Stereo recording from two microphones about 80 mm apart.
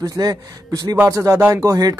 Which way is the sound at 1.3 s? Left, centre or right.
Right.